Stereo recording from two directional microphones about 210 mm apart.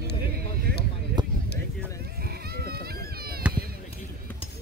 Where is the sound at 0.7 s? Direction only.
45° right (ahead or behind).